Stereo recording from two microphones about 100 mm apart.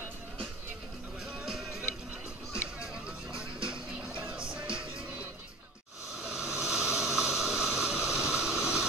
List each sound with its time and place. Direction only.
1.2 s music: 5° right (ahead or behind)
4.2 s music: 10° right (ahead or behind)
6.2 s a sound: 5° right (ahead or behind)